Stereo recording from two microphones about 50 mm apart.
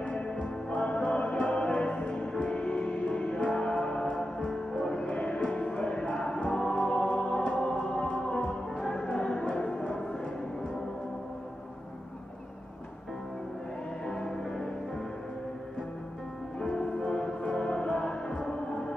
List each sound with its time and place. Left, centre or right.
0.0 s music: centre
14.0 s music: centre
16.5 s music: centre